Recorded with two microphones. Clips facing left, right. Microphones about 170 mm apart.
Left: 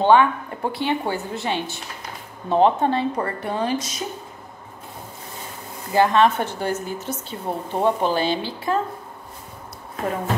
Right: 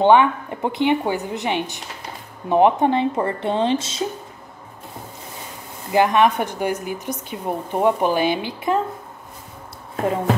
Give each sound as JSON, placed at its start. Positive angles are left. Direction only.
{"t": 0.0, "sound": "a woman's voice", "side_deg": -20}
{"t": 5.9, "sound": "a woman's voice", "side_deg": -15}